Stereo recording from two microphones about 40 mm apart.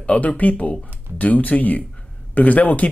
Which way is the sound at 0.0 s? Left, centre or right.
Left.